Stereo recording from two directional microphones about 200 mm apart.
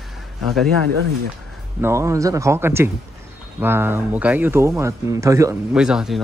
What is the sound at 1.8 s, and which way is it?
Speech, 15° right (ahead or behind).